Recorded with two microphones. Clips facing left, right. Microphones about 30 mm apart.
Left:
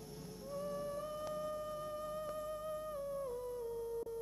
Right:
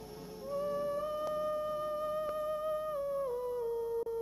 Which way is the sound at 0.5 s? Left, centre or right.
Centre.